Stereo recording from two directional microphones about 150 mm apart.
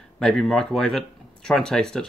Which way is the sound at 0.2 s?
5° left (ahead or behind).